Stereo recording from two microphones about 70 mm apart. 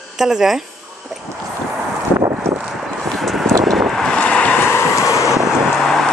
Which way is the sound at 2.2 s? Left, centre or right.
Right.